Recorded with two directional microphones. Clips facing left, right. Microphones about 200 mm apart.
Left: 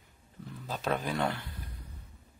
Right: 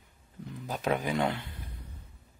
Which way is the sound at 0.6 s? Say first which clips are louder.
Right 2 dB; 15° right (ahead or behind).